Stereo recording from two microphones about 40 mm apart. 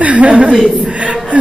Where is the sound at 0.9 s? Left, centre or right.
Right.